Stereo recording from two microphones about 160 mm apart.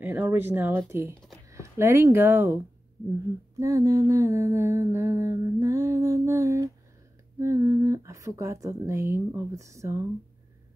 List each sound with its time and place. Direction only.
0.0 s speech: 15° right (ahead or behind)
3.5 s mantra: 20° right (ahead or behind)
7.3 s speech: 15° right (ahead or behind)